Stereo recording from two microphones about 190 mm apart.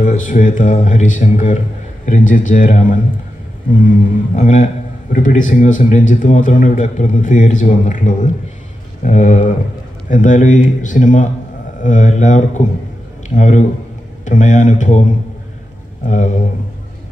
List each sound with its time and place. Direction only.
0.0 s a man's voice: 45° left (ahead or behind)
16.1 s a man's voice: 40° left (ahead or behind)